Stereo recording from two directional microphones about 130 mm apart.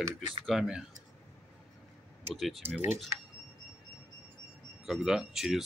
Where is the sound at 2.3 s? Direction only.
Centre (ahead or behind).